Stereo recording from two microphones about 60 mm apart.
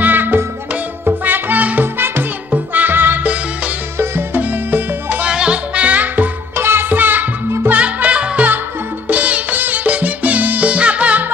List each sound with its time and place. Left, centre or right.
0.0 s music: right
2.0 s music: right
4.4 s music: right
5.2 s music: centre
6.5 s music: right